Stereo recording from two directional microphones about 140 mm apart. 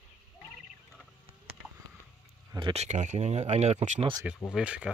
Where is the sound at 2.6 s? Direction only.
50° right (ahead or behind).